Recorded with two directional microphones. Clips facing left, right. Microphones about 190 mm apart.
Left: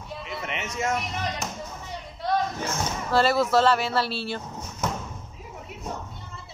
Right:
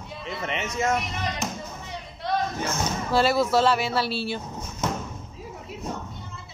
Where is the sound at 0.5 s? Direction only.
30° right (ahead or behind).